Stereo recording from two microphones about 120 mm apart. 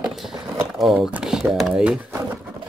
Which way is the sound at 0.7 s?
5° right (ahead or behind).